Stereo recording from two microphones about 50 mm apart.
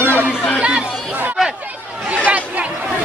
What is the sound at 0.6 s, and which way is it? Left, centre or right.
Chatter, right.